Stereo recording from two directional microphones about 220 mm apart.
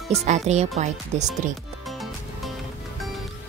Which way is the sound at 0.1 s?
30° right (ahead or behind).